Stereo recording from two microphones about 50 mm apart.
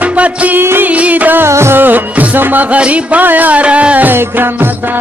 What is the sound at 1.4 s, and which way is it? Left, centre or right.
Music, right.